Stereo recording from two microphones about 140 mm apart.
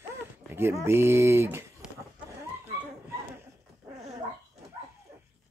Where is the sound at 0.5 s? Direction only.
15° right (ahead or behind).